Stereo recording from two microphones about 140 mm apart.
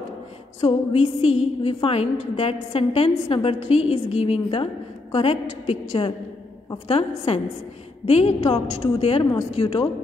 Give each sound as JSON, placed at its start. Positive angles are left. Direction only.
{"t": 0.6, "sound": "a woman's voice", "side_deg": 45}